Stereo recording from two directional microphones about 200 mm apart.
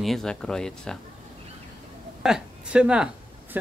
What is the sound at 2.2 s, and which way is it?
A woman's voice, 5° right (ahead or behind).